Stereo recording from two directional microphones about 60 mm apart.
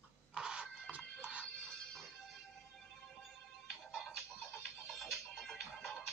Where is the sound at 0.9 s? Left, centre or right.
Centre.